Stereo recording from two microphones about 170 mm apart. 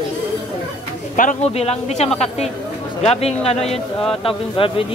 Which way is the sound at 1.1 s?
50° left (ahead or behind).